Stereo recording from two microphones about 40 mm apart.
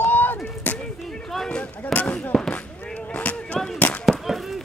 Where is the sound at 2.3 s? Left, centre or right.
Left.